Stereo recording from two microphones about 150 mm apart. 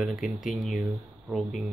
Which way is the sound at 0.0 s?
Centre (ahead or behind).